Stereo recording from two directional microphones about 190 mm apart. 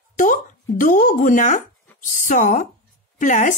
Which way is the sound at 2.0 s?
40° left (ahead or behind).